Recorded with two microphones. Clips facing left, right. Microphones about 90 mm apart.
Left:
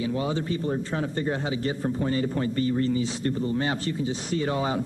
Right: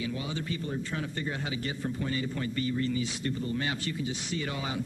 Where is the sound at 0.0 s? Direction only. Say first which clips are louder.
Left 7 dB; 35° left (ahead or behind).